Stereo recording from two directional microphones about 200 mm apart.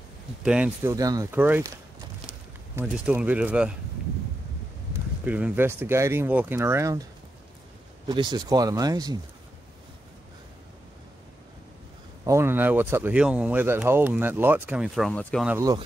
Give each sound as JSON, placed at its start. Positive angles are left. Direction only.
{"t": 0.4, "sound": "speech", "side_deg": -5}
{"t": 0.9, "sound": "speech", "side_deg": -15}
{"t": 2.7, "sound": "speech", "side_deg": -5}
{"t": 5.2, "sound": "speech", "side_deg": -10}
{"t": 8.1, "sound": "speech", "side_deg": -20}
{"t": 12.3, "sound": "speech", "side_deg": -10}
{"t": 15.5, "sound": "speech", "side_deg": -20}